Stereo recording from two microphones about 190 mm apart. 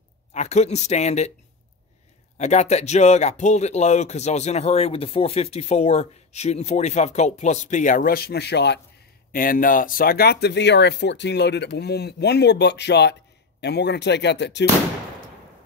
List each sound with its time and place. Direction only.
0.3 s speech: 35° left (ahead or behind)
2.3 s speech: 35° left (ahead or behind); by 8.8 s 65° left (ahead or behind)
9.3 s speech: 50° left (ahead or behind); by 14.7 s 65° left (ahead or behind)